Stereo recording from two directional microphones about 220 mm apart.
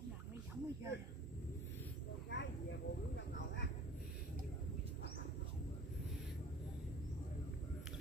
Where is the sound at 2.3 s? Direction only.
55° left (ahead or behind).